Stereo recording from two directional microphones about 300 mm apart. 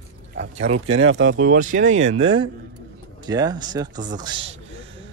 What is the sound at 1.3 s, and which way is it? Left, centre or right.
Speech, right.